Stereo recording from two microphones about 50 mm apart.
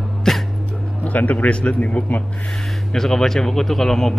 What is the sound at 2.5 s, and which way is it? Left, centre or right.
Speech, centre.